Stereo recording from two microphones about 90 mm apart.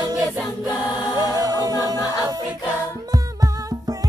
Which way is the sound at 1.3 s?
45° right (ahead or behind).